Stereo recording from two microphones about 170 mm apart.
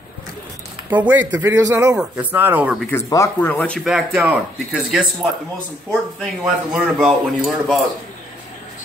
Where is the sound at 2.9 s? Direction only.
15° left (ahead or behind); by 4.2 s 5° right (ahead or behind).